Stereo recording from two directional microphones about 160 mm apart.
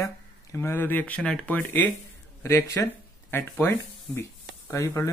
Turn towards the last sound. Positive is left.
turn(degrees=20)  # may be behind; listen again after turning